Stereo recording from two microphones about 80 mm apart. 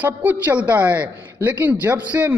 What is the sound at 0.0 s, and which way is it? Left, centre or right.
A man's voice, centre.